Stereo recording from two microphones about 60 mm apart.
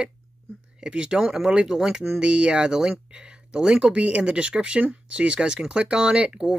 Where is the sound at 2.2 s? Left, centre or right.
Centre.